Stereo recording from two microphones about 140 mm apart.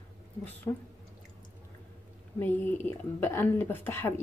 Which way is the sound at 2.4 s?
15° left (ahead or behind).